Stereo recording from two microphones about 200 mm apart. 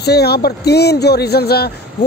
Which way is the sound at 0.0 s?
55° left (ahead or behind).